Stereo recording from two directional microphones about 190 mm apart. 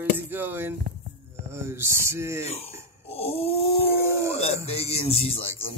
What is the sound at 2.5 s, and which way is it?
Speech, 30° left (ahead or behind).